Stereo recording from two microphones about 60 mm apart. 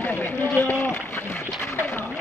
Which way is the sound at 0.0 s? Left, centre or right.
Left.